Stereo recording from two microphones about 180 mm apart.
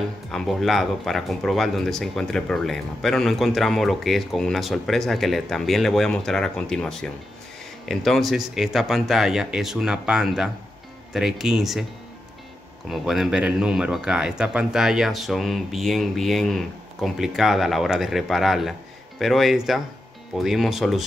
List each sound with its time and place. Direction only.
0.3 s a man's voice: centre (ahead or behind)
12.8 s a man's voice: 5° right (ahead or behind)